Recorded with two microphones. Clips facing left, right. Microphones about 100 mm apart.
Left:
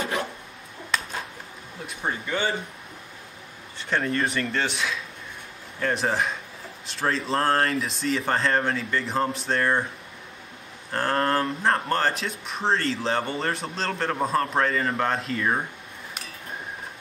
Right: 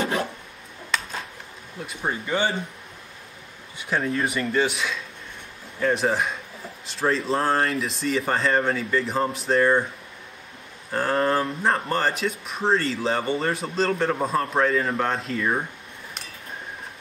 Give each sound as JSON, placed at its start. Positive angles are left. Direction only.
{"t": 0.9, "sound": "a sound", "side_deg": 0}
{"t": 2.2, "sound": "speech", "side_deg": -25}
{"t": 3.7, "sound": "speech", "side_deg": -5}
{"t": 10.9, "sound": "speech", "side_deg": -5}